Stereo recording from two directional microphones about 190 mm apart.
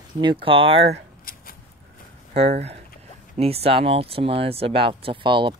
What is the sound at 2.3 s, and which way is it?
Speech, 35° right (ahead or behind).